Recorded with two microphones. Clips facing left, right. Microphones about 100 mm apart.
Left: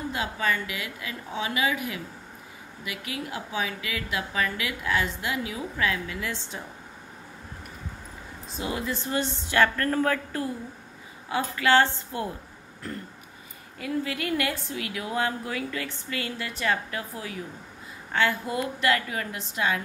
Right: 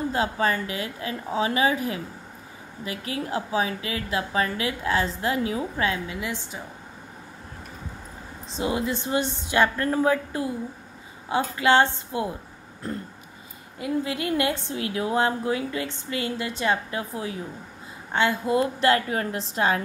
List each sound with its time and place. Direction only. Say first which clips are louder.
0.1 s a woman's voice: right 2 dB; 35° right (ahead or behind); by 6.4 s 20° right (ahead or behind)
8.5 s a woman's voice: right 5 dB; 25° right (ahead or behind)